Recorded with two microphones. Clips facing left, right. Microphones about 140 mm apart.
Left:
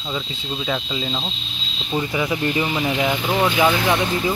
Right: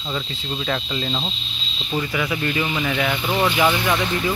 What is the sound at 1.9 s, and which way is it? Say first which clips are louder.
Speech: left 2 dB; 20° left (ahead or behind).